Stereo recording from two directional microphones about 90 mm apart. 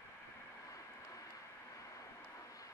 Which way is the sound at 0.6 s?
40° left (ahead or behind).